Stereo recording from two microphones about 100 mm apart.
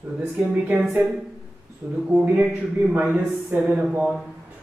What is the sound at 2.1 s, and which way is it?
Speech, 5° right (ahead or behind).